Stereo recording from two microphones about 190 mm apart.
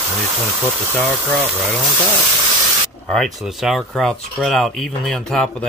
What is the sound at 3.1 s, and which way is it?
Speech, centre (ahead or behind).